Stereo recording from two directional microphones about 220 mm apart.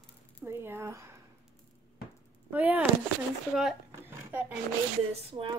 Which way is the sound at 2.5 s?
10° right (ahead or behind).